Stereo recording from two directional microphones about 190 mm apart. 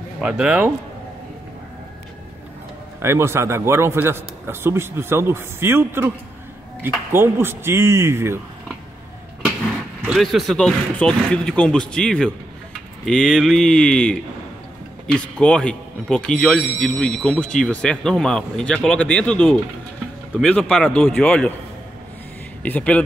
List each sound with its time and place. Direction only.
0.2 s speech: 5° right (ahead or behind)
3.0 s a man's voice: 15° right (ahead or behind)
10.0 s speech: centre (ahead or behind)
22.6 s speech: 5° left (ahead or behind)